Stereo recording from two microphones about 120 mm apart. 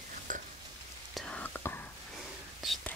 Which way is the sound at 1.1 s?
5° left (ahead or behind).